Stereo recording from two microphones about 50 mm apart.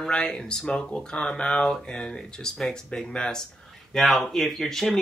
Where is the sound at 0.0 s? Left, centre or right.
Centre.